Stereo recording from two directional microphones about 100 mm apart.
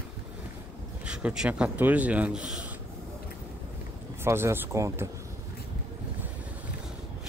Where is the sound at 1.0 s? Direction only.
10° right (ahead or behind).